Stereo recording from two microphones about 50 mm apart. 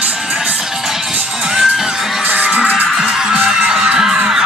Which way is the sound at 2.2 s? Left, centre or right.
Right.